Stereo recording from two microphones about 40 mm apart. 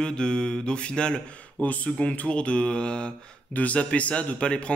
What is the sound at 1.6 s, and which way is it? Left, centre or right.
Speech, left.